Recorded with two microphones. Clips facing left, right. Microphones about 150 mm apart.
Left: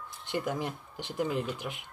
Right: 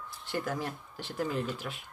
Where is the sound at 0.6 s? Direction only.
20° left (ahead or behind).